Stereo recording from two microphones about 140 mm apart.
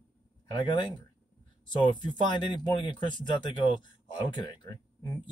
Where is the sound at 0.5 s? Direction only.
35° left (ahead or behind).